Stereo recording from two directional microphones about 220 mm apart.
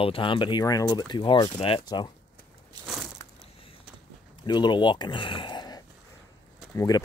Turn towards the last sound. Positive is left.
turn(degrees=15)  # may be behind; listen again after turning